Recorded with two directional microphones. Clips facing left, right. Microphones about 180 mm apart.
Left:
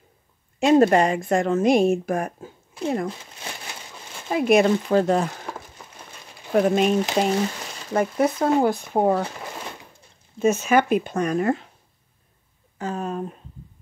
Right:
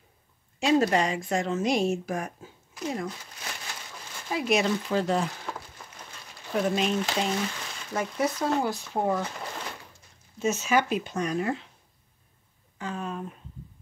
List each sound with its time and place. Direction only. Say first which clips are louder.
0.6 s a woman's voice: left 7 dB; 50° left (ahead or behind)
4.3 s speech: left 8 dB; 55° left (ahead or behind)
6.5 s speech: left 7 dB; 50° left (ahead or behind)
7.2 s a sound: left 7 dB; 40° left (ahead or behind)
7.9 s a woman's voice: left 7 dB; 55° left (ahead or behind)
10.4 s speech: left 6 dB; 55° left (ahead or behind)
12.7 s a sound: left 6 dB; 40° left (ahead or behind)